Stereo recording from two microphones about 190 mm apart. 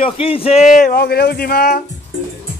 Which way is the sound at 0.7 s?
50° left (ahead or behind).